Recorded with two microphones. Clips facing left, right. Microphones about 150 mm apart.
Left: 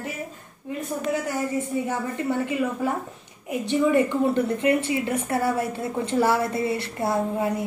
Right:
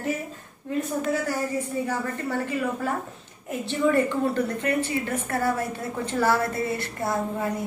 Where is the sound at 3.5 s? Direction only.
15° left (ahead or behind).